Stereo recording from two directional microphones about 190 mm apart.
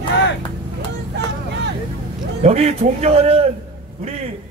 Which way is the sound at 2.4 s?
35° right (ahead or behind).